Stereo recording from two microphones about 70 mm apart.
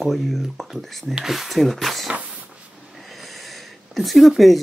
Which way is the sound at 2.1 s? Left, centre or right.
Centre.